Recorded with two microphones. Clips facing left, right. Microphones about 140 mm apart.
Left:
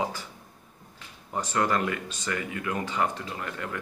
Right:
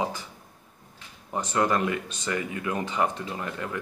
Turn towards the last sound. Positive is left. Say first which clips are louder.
# right 2 dB
turn(degrees=-20)  # may be behind; listen again after turning